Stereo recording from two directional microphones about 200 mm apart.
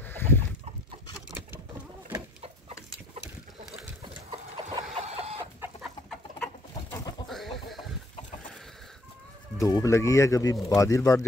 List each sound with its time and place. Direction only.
0.0 s chicken: 10° left (ahead or behind)
4.3 s chicken: 25° right (ahead or behind)
6.0 s bird: 5° left (ahead or behind)
7.2 s chicken: centre (ahead or behind)
9.6 s speech: 15° left (ahead or behind)